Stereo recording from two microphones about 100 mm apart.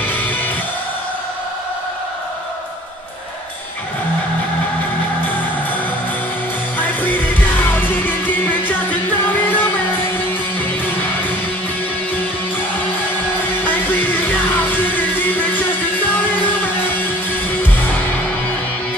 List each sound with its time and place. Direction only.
0.0 s music: 20° left (ahead or behind)
6.8 s music: 15° left (ahead or behind)
11.0 s music: 15° left (ahead or behind)
13.7 s music: 15° left (ahead or behind)